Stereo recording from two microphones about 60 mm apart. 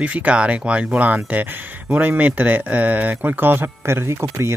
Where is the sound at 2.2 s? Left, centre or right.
Right.